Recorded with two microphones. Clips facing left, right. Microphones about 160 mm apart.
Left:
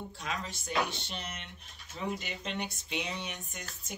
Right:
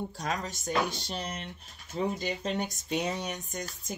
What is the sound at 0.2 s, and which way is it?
Speech, 45° right (ahead or behind).